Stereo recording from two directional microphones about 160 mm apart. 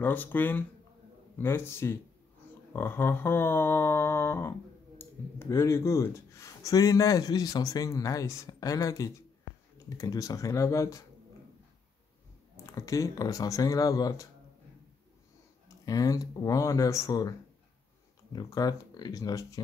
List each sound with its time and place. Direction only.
0.0 s speech: 10° left (ahead or behind)
2.7 s mantra: 15° left (ahead or behind)
12.6 s mantra: 20° left (ahead or behind)
15.8 s mantra: 20° left (ahead or behind)
18.3 s mantra: 25° left (ahead or behind)